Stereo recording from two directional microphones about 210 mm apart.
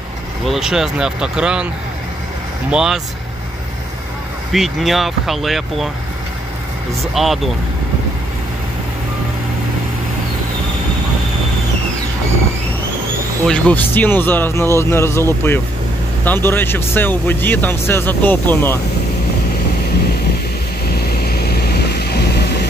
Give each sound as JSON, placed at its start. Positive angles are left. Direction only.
{"t": 0.5, "sound": "speech", "side_deg": -5}
{"t": 2.7, "sound": "speech", "side_deg": -5}
{"t": 4.5, "sound": "speech", "side_deg": 0}
{"t": 7.2, "sound": "speech", "side_deg": 0}
{"t": 13.5, "sound": "speech", "side_deg": 10}
{"t": 21.2, "sound": "vehicle", "side_deg": 50}